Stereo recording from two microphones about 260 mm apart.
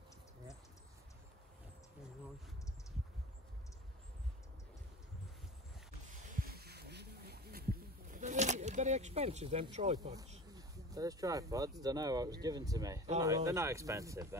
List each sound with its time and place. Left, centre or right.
6.5 s sheep: right
10.5 s a sound: centre
11.8 s speech: centre